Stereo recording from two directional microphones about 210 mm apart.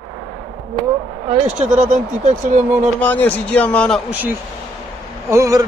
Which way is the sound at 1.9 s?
35° right (ahead or behind).